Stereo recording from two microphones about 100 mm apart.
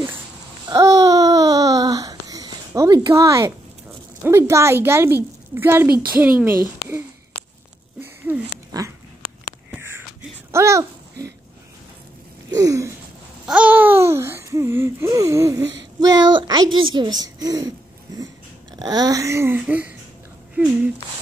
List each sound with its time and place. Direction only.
0.7 s babbling: 35° right (ahead or behind)
3.1 s a sound: 30° right (ahead or behind)
4.2 s a woman's voice: 25° right (ahead or behind)
8.7 s dog: 40° right (ahead or behind)
10.5 s babbling: 30° right (ahead or behind)
12.4 s a sound: 35° right (ahead or behind)
13.5 s babbling: 15° right (ahead or behind); by 18.3 s 35° right (ahead or behind)
18.8 s a sound: 40° right (ahead or behind)
19.6 s speech: 15° right (ahead or behind)